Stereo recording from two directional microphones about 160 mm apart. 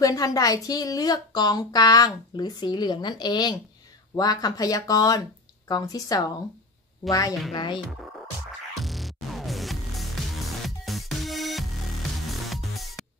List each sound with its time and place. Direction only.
0.0 s speech: 20° left (ahead or behind)
8.0 s music: centre (ahead or behind)